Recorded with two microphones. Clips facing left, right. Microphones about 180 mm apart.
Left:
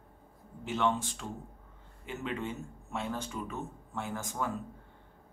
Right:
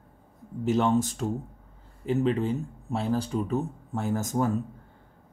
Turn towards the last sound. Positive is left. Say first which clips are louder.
# right 9 dB
turn(degrees=-40)  # may be behind; listen again after turning